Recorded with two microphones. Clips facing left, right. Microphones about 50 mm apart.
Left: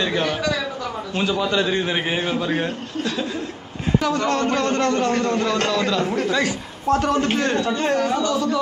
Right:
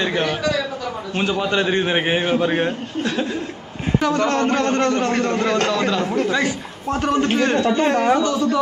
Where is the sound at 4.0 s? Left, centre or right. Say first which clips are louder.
Right 2 dB; centre.